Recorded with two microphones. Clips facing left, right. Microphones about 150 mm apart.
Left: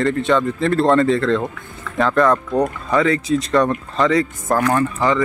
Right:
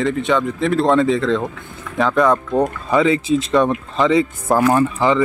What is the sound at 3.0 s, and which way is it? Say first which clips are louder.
Speech: right 2 dB; 20° right (ahead or behind).